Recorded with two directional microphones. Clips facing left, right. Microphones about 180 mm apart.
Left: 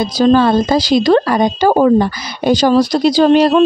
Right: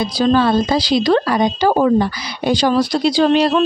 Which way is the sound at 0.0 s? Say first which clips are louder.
Left 4 dB; 40° left (ahead or behind).